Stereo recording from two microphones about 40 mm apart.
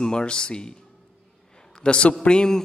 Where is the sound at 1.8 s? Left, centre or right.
Left.